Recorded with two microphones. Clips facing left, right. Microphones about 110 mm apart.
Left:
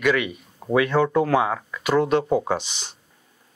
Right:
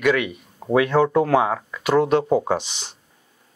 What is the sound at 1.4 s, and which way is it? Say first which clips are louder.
Speech: right 2 dB; 40° right (ahead or behind).